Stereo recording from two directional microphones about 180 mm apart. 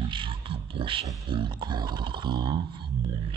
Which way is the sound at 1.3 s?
25° right (ahead or behind).